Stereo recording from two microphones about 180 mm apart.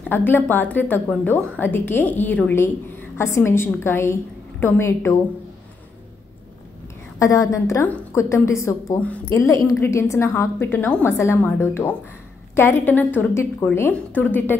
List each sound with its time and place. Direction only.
0.0 s a woman's voice: 10° left (ahead or behind)
7.2 s a woman's voice: 15° left (ahead or behind)